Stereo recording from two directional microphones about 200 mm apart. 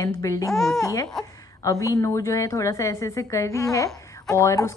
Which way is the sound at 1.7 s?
15° left (ahead or behind).